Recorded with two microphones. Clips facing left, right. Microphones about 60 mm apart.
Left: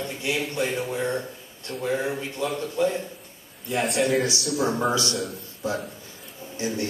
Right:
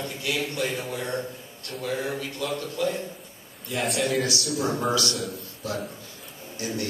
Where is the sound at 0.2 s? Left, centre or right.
Left.